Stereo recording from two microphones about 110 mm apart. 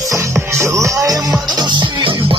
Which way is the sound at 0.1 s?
25° right (ahead or behind).